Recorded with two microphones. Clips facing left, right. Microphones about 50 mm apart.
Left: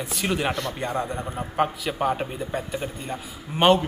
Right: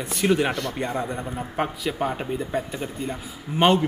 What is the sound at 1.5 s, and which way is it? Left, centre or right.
Speech, centre.